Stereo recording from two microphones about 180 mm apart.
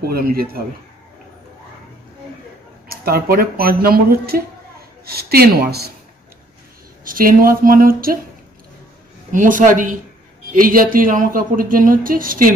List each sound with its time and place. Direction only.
0.0 s speech: 55° right (ahead or behind)
2.9 s speech: 60° right (ahead or behind)
7.1 s speech: 50° right (ahead or behind)
9.3 s speech: 45° right (ahead or behind)